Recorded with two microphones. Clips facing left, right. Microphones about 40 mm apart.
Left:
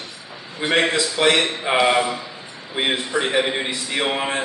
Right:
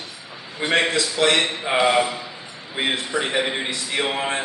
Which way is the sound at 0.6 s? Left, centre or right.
Centre.